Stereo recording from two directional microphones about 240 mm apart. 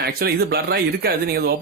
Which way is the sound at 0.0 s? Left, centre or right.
Right.